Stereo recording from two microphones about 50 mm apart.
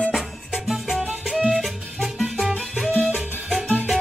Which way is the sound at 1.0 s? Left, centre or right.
Centre.